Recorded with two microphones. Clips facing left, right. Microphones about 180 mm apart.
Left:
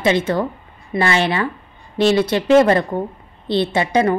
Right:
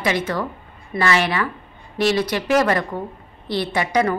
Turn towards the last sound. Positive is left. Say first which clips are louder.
# left 3 dB
turn(degrees=25)  # may be behind; listen again after turning